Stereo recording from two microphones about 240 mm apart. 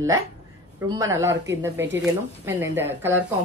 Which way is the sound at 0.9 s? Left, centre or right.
Centre.